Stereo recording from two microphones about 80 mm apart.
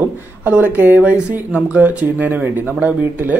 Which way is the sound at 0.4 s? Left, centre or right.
Centre.